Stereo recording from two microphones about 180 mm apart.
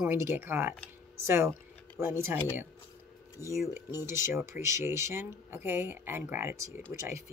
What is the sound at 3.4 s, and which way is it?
Speech, 20° left (ahead or behind).